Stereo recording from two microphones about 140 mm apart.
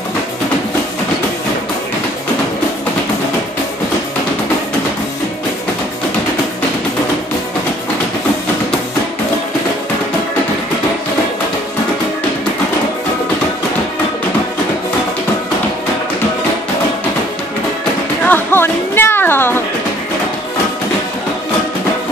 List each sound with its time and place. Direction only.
18.2 s music: 15° left (ahead or behind)